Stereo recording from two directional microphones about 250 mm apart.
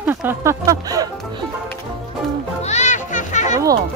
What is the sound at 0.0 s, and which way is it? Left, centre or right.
Speech, centre.